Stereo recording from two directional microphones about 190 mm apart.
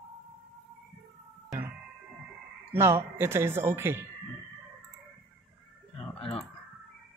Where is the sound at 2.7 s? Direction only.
15° right (ahead or behind).